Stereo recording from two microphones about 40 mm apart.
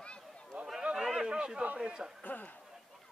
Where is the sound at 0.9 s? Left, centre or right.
Centre.